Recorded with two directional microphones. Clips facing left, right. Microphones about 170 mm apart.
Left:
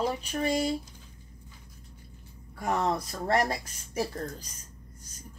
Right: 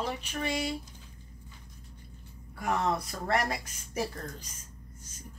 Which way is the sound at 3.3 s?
35° left (ahead or behind).